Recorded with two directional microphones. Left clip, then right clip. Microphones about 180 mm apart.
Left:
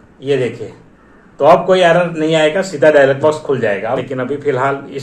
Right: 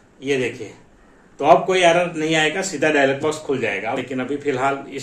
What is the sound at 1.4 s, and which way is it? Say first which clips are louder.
A man's voice: left 5 dB; 15° right (ahead or behind).